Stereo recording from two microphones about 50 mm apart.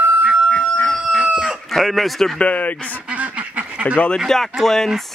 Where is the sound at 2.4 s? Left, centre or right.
Left.